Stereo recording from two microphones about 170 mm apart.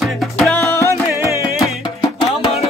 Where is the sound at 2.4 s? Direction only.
35° left (ahead or behind).